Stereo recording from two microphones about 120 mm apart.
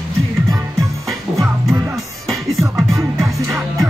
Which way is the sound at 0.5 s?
30° right (ahead or behind).